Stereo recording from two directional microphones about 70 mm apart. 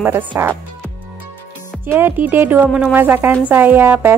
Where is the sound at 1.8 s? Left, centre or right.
Right.